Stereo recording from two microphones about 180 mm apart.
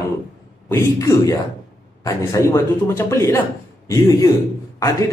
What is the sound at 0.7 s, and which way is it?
A man's voice, 15° left (ahead or behind).